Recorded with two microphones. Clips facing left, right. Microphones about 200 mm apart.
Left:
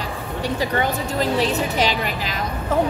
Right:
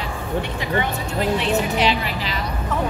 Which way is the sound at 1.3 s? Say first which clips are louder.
Even; 40° left (ahead or behind).